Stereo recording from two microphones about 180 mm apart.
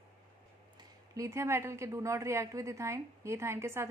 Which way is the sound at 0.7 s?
20° right (ahead or behind).